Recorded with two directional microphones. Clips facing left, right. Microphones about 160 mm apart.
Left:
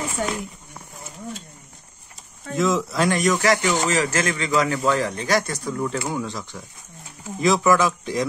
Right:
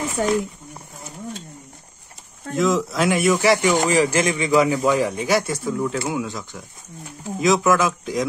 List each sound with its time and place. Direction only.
0.2 s speech: 35° right (ahead or behind)
2.5 s a man's voice: centre (ahead or behind)